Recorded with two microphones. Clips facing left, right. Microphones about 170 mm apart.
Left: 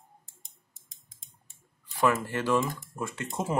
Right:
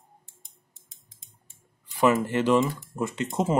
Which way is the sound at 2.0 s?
20° right (ahead or behind).